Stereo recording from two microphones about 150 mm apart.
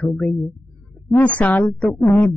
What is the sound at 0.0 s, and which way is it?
Speech, 10° left (ahead or behind).